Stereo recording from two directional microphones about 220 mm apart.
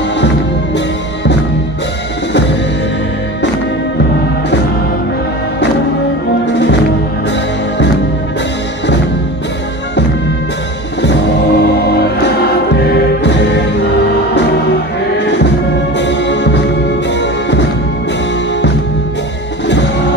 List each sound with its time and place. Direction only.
6.4 s music: 55° left (ahead or behind)
11.0 s music: 50° left (ahead or behind)
15.1 s music: 55° left (ahead or behind)